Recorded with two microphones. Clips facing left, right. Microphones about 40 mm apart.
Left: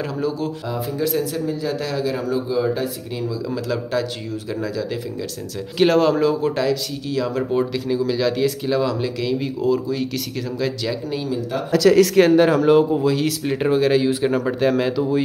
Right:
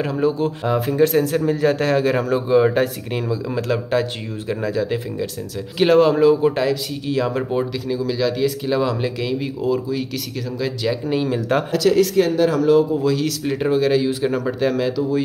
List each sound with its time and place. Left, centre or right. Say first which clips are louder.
0.0 s a man's voice: right 4 dB; right
3.3 s speech: right 2 dB; right
5.8 s speech: right 2 dB; centre
7.5 s speech: left 1 dB; centre
8.6 s speech: right 1 dB; centre
11.2 s a man's voice: right 5 dB; right
12.0 s speech: left 3 dB; left
12.4 s speech: left 1 dB; left
13.0 s speech: even; centre